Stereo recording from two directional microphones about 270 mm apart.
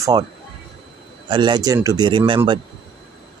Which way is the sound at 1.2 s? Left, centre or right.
Centre.